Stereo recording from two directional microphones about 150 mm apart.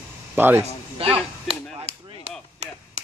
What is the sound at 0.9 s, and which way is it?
Chop, 40° right (ahead or behind).